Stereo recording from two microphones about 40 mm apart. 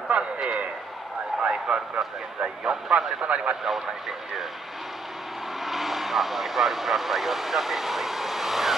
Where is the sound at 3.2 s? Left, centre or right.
Right.